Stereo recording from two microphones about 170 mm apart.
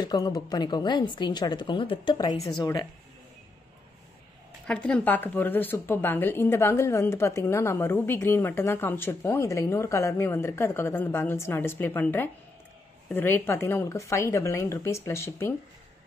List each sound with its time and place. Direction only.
0.0 s a woman's voice: 25° left (ahead or behind)
4.6 s speech: 5° left (ahead or behind)